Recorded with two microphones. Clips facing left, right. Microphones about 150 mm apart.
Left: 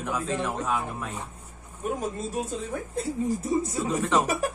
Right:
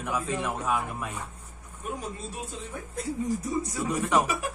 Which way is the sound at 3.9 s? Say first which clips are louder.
Even; 10° right (ahead or behind).